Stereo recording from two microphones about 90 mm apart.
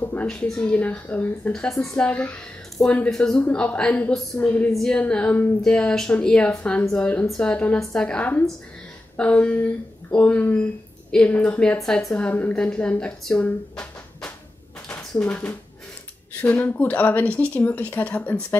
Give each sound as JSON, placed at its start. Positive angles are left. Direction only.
{"t": 0.0, "sound": "a sound", "side_deg": 20}
{"t": 0.6, "sound": "speech", "side_deg": 15}
{"t": 1.5, "sound": "speech", "side_deg": 5}
{"t": 3.1, "sound": "speech", "side_deg": 5}
{"t": 3.3, "sound": "speech", "side_deg": 15}
{"t": 4.3, "sound": "speech", "side_deg": 35}
{"t": 4.7, "sound": "speech", "side_deg": 10}
{"t": 15.0, "sound": "speech", "side_deg": 15}
{"t": 16.5, "sound": "speech", "side_deg": 15}